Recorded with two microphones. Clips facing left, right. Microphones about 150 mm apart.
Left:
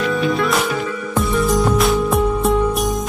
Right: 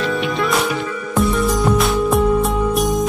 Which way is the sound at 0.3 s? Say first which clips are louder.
Left 1 dB; centre (ahead or behind).